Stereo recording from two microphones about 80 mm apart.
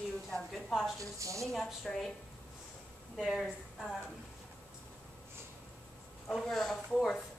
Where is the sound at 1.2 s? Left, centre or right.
Right.